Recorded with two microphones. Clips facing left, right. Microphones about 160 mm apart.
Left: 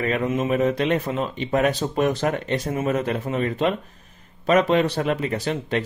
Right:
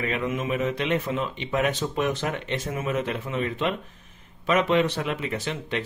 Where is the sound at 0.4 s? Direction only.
40° left (ahead or behind).